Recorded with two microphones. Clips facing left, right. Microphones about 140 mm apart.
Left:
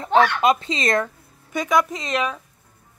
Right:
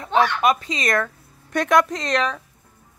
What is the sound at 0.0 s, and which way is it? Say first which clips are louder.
Speech: left 2 dB; 25° left (ahead or behind).